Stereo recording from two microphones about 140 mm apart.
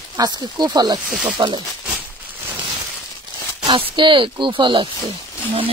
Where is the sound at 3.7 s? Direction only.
35° right (ahead or behind).